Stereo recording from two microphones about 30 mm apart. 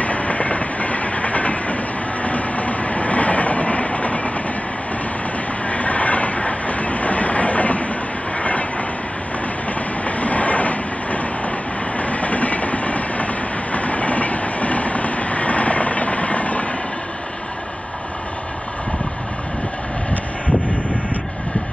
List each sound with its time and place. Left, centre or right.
0.0 s train: left
5.7 s train: left
8.4 s vehicle: left
10.0 s train: left